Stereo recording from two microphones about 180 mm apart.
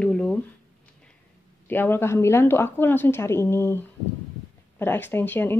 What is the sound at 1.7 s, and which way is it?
A woman's voice, 10° left (ahead or behind).